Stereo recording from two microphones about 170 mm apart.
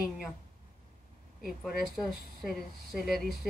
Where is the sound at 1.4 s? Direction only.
Centre (ahead or behind).